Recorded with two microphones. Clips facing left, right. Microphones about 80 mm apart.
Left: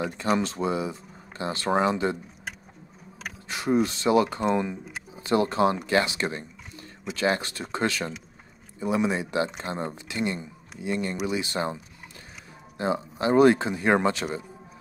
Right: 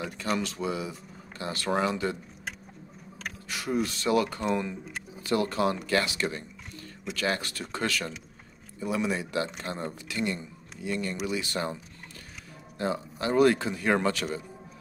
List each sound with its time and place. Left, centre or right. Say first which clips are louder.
0.4 s speech: left 4 dB; left
3.4 s speech: left 6 dB; left